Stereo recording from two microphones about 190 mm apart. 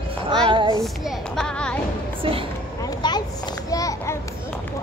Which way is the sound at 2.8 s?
20° left (ahead or behind).